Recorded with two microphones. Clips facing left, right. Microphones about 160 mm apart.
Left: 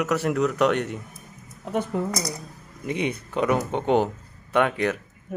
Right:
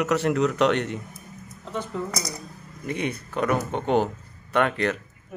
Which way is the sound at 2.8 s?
15° left (ahead or behind).